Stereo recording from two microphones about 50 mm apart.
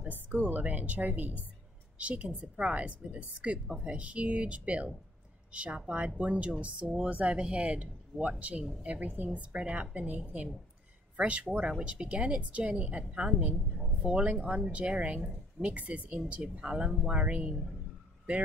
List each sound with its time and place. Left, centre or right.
0.0 s a woman's voice: right
13.7 s speech: centre
14.2 s a woman's voice: right
17.1 s a woman's voice: right